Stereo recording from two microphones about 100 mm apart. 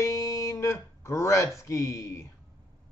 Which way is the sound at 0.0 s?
35° left (ahead or behind).